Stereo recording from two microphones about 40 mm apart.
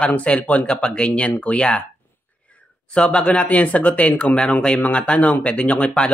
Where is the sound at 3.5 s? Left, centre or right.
Left.